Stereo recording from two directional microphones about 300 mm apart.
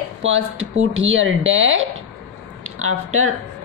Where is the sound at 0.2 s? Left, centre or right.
Right.